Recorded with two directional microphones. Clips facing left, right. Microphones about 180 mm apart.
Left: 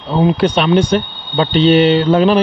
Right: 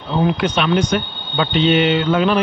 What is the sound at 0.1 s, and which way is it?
Speech, 35° left (ahead or behind).